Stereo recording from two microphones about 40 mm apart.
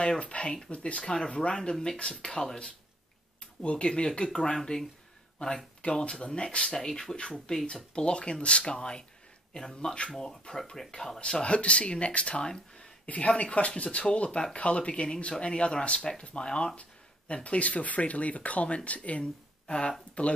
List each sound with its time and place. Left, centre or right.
0.2 s speech: left; by 2.7 s centre
3.6 s speech: left
5.4 s speech: left; by 7.2 s centre
7.2 s speech: left
11.4 s speech: left